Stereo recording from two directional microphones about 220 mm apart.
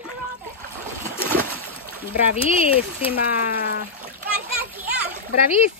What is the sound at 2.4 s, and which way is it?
Speech, 25° left (ahead or behind).